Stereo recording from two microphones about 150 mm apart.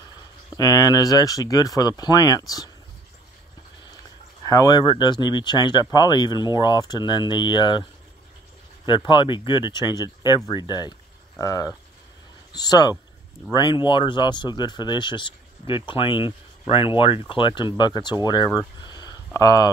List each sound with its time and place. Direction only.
0.6 s speech: 25° left (ahead or behind)
4.5 s speech: 25° left (ahead or behind)
8.8 s speech: 30° left (ahead or behind)